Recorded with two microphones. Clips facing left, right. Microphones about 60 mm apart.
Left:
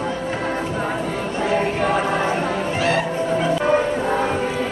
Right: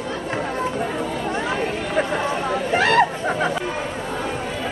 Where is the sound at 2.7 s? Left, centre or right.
Right.